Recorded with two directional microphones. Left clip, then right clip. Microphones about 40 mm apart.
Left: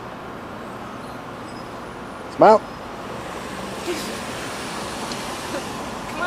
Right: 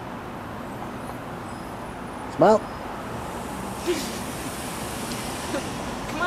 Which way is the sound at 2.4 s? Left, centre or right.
Left.